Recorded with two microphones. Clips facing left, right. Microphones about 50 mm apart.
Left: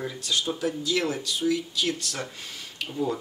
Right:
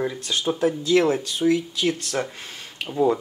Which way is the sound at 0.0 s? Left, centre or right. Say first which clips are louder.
Right 4 dB; right.